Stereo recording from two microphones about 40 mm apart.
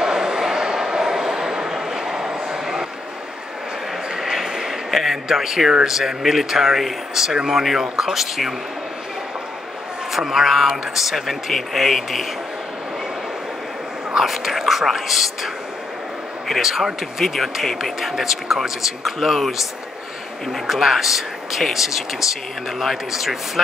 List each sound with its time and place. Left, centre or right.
0.0 s a sound: centre
4.2 s a sound: centre
4.9 s speech: centre
10.1 s speech: centre
14.1 s speech: centre
20.6 s speech: centre